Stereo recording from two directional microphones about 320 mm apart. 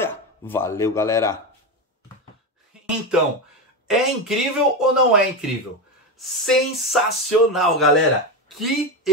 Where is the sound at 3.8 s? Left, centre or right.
Centre.